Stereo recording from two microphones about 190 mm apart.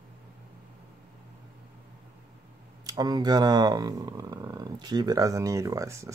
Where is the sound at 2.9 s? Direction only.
20° right (ahead or behind).